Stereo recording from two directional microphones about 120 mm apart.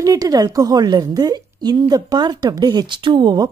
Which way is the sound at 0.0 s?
30° right (ahead or behind).